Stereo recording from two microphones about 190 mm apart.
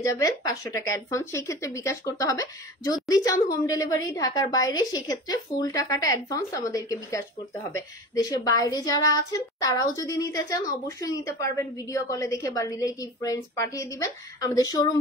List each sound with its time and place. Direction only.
0.0 s a woman's voice: 20° left (ahead or behind)